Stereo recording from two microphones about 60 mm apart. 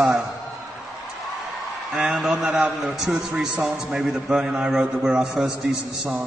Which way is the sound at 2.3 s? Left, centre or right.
Centre.